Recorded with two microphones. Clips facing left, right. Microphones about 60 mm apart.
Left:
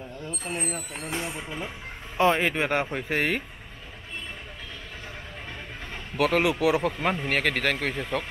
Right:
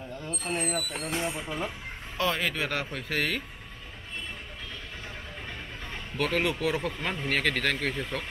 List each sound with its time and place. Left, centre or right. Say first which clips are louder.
0.7 s speech: right 1 dB; left
1.4 s speech: right 2 dB; centre
2.1 s speech: left 6 dB; left
6.1 s speech: left 5 dB; centre